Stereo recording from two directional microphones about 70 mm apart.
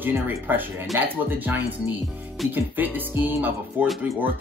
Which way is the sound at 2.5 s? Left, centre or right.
Right.